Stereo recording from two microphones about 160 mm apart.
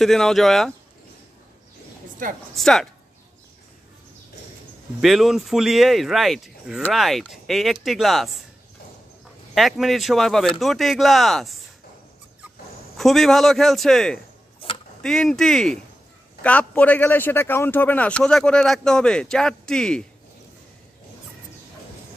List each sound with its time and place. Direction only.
0.0 s speech: centre (ahead or behind)
2.2 s speech: 60° right (ahead or behind)
2.5 s speech: 5° left (ahead or behind)
5.0 s speech: centre (ahead or behind)
9.5 s speech: centre (ahead or behind)
12.9 s a man's voice: centre (ahead or behind)